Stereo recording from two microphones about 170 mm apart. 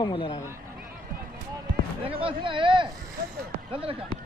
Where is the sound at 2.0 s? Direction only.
30° right (ahead or behind).